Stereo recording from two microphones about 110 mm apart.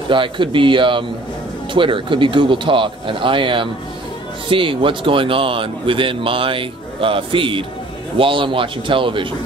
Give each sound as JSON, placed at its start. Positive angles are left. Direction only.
{"t": 0.1, "sound": "speech", "side_deg": -50}